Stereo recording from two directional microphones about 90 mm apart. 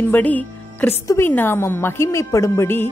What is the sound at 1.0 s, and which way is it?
Speech, 35° left (ahead or behind).